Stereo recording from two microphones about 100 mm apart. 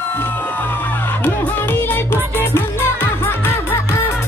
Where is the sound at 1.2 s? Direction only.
20° left (ahead or behind).